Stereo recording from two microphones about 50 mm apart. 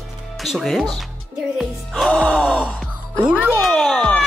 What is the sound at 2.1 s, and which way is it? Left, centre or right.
Gasp, left.